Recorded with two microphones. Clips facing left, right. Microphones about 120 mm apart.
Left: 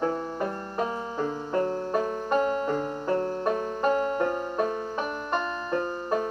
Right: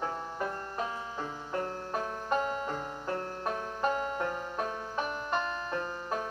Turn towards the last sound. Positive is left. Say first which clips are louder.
# left 7 dB
turn(degrees=55)  # may be behind; listen again after turning